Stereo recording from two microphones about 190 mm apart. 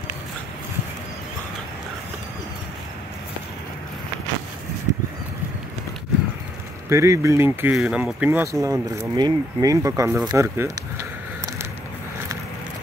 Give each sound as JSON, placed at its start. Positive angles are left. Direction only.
{"t": 6.9, "sound": "speech", "side_deg": -15}